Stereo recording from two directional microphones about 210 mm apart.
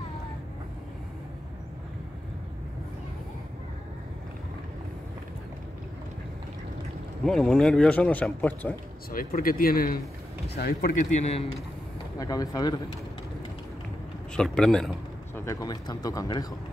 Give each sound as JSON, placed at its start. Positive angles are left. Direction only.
{"t": 7.2, "sound": "a man's voice", "side_deg": 5}
{"t": 9.1, "sound": "speech", "side_deg": 45}
{"t": 12.2, "sound": "speech", "side_deg": 15}
{"t": 14.3, "sound": "a sound", "side_deg": 5}
{"t": 15.4, "sound": "speech", "side_deg": 15}